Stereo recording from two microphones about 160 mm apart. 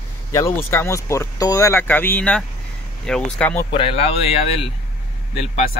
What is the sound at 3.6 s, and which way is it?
Speech, 35° left (ahead or behind).